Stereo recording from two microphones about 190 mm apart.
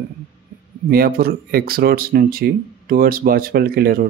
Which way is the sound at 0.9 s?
50° right (ahead or behind).